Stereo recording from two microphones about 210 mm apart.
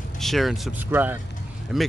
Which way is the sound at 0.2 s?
Centre (ahead or behind).